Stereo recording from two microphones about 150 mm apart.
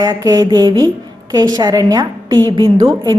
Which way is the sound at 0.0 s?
25° right (ahead or behind).